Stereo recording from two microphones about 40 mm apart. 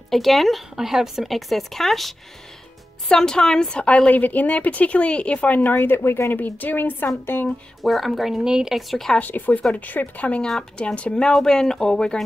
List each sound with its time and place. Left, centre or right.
0.1 s speech: centre
3.1 s a woman's voice: centre
4.1 s speech: left
5.8 s speech: left
6.3 s a woman's voice: left
7.8 s speech: centre
8.5 s speech: centre
9.2 s speech: left
11.0 s a woman's voice: left
11.3 s a woman's voice: centre